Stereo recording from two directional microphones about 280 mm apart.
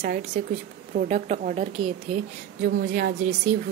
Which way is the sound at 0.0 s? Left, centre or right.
Right.